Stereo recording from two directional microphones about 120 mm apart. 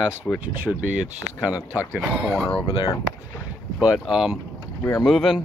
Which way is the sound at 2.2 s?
5° left (ahead or behind).